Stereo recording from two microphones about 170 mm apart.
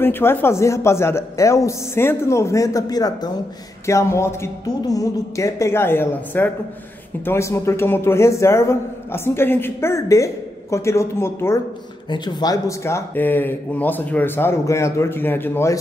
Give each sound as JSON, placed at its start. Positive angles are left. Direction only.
{"t": 0.0, "sound": "a man's voice", "side_deg": 15}
{"t": 12.1, "sound": "a man's voice", "side_deg": 25}